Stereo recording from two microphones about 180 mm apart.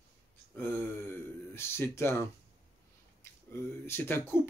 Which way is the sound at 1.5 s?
15° left (ahead or behind).